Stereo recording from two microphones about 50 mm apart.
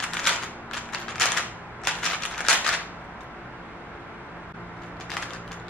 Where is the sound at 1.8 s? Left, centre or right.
Centre.